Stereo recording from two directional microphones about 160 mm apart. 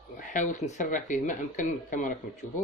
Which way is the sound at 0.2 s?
50° left (ahead or behind).